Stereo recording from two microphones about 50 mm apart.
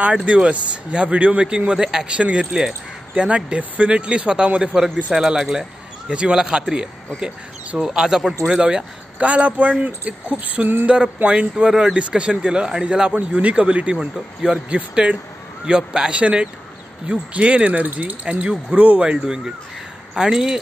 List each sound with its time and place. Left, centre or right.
0.0 s speech: right
5.4 s speech: centre
6.0 s speech: right
19.1 s speech: centre